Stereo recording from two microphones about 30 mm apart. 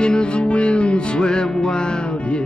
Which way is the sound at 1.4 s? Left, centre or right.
Centre.